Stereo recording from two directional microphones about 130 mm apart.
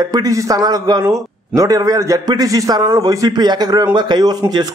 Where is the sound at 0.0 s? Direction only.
30° right (ahead or behind).